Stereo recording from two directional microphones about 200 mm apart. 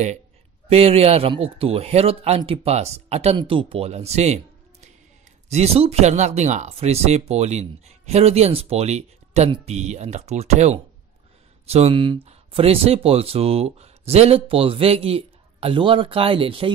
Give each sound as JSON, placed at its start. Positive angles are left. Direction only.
{"t": 0.7, "sound": "speech", "side_deg": -30}
{"t": 5.5, "sound": "speech", "side_deg": -30}